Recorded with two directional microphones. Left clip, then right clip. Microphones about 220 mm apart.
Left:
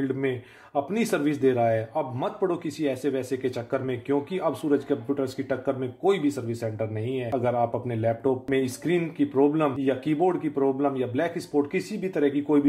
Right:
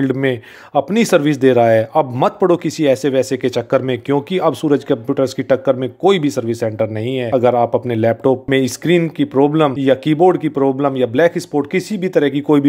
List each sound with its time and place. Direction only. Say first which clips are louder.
0.0 s speech: right 10 dB; 45° right (ahead or behind)